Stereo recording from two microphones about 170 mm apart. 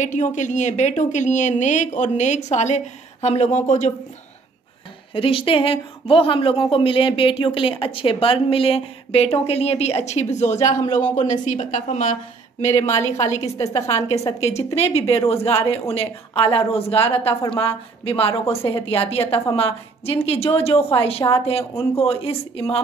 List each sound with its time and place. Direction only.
0.0 s a woman's voice: 45° left (ahead or behind)
5.1 s speech: 30° left (ahead or behind)
12.9 s a woman's voice: 20° left (ahead or behind)
13.8 s speech: 40° left (ahead or behind)